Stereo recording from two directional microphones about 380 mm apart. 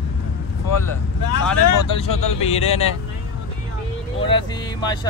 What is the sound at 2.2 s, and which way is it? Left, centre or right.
Speech, centre.